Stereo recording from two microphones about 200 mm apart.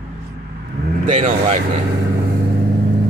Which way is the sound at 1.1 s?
35° right (ahead or behind).